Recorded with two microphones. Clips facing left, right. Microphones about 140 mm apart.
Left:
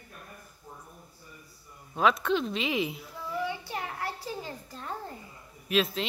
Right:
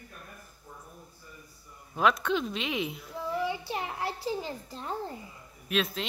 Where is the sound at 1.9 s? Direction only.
Centre (ahead or behind).